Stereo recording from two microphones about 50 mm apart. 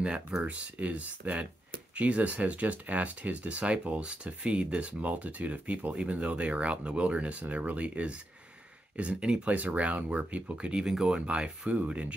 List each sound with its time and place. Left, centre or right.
0.0 s speech: centre
0.4 s speech: right